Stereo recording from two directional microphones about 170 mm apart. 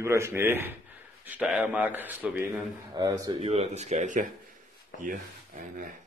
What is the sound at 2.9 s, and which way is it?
Speech, 20° right (ahead or behind).